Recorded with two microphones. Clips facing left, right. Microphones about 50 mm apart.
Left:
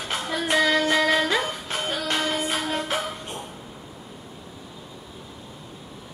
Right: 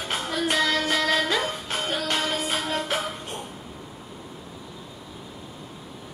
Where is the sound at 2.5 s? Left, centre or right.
Centre.